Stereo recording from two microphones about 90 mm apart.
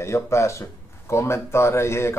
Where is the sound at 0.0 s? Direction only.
30° left (ahead or behind).